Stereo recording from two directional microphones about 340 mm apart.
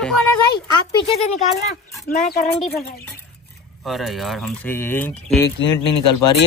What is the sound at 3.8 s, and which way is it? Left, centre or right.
Speech, centre.